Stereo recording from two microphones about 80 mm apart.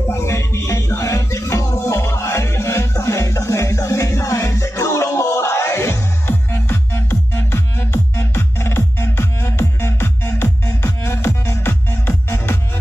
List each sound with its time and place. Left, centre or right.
0.1 s music: left